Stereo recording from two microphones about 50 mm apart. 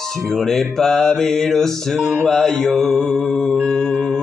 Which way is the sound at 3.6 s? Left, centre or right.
Centre.